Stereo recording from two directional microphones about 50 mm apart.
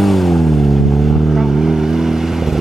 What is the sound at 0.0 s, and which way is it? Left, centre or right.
Vehicle, centre.